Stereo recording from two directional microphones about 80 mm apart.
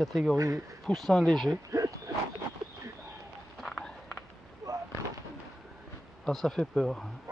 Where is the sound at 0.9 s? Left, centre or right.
Centre.